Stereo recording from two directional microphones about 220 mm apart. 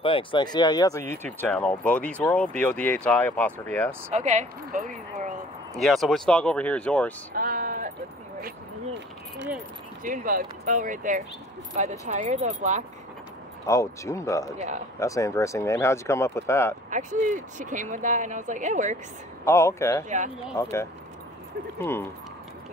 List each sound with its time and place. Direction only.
0.0 s speech: 25° left (ahead or behind); by 3.9 s 10° left (ahead or behind)
4.1 s speech: 35° right (ahead or behind)
5.8 s speech: centre (ahead or behind)
7.3 s a sound: 40° right (ahead or behind)
10.0 s speech: 40° right (ahead or behind)
13.7 s speech: 15° left (ahead or behind)
16.9 s speech: 35° right (ahead or behind)
19.4 s speech: 10° left (ahead or behind)
21.7 s speech: 10° left (ahead or behind)